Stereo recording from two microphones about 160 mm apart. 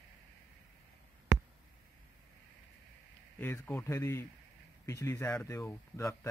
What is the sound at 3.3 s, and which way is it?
Speech, 10° left (ahead or behind).